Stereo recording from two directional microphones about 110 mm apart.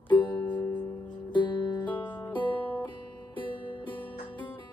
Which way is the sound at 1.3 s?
45° left (ahead or behind).